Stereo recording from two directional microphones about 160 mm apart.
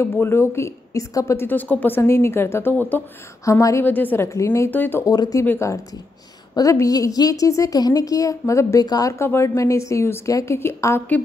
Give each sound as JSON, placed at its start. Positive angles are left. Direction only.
{"t": 0.0, "sound": "a woman's voice", "side_deg": 15}
{"t": 5.1, "sound": "a woman's voice", "side_deg": 25}
{"t": 5.4, "sound": "a woman's voice", "side_deg": 15}